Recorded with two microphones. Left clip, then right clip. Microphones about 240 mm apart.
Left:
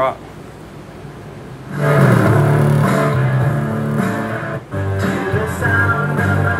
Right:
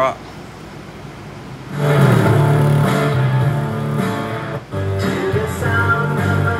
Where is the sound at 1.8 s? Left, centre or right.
Centre.